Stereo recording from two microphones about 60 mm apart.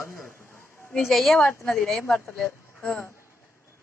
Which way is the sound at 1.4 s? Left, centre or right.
Left.